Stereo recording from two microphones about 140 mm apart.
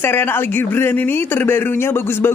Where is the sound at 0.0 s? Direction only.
15° left (ahead or behind).